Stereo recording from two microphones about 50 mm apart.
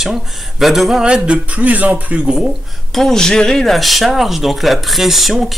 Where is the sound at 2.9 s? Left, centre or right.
Centre.